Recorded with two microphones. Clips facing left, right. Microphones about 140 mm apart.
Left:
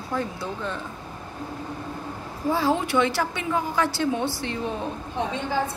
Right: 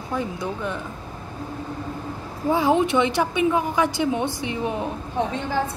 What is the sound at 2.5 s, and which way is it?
A woman's voice, 15° right (ahead or behind).